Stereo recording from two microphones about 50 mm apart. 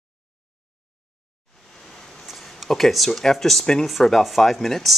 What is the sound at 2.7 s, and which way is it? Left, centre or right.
Speech, centre.